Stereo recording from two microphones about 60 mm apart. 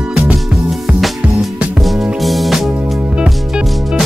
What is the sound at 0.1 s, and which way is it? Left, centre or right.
Music, centre.